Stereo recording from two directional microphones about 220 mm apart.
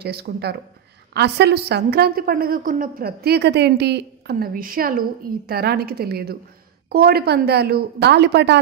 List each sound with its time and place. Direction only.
0.0 s a woman's voice: 45° right (ahead or behind)